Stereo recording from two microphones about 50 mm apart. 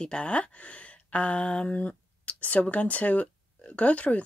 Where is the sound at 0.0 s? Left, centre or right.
Left.